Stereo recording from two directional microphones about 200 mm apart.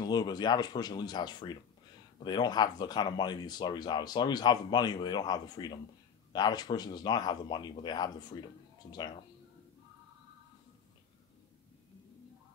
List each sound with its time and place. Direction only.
0.0 s speech: 20° left (ahead or behind)